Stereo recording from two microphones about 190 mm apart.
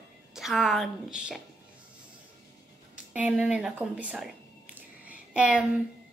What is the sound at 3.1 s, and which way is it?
A woman's voice, 5° right (ahead or behind).